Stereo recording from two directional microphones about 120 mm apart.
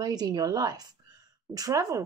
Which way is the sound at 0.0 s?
35° right (ahead or behind).